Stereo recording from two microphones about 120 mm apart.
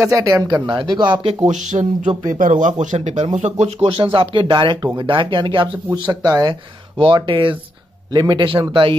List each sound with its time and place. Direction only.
0.1 s speech: 30° right (ahead or behind)
1.5 s speech: 90° right; by 3.9 s 65° right (ahead or behind)
3.9 s speech: 45° right (ahead or behind)
6.2 s speech: 35° right (ahead or behind)
7.0 s speech: 45° right (ahead or behind)